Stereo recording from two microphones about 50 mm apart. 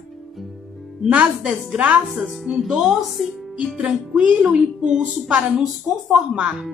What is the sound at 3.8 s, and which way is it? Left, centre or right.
Music, right.